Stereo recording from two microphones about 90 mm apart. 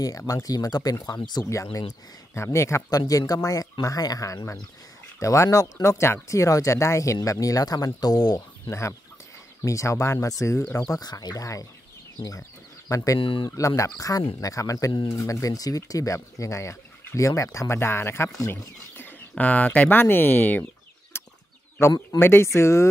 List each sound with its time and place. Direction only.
0.3 s speech: 40° left (ahead or behind)
8.6 s speech: 30° left (ahead or behind)
10.9 s speech: 45° left (ahead or behind)
13.2 s speech: 70° left (ahead or behind)
13.6 s speech: 35° left (ahead or behind); by 20.6 s 20° left (ahead or behind)
21.1 s chicken: 25° left (ahead or behind)
21.8 s speech: 30° left (ahead or behind)